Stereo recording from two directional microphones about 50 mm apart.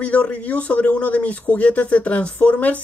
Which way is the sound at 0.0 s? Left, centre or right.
Left.